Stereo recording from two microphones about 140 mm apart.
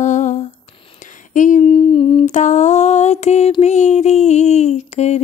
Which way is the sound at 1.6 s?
40° left (ahead or behind).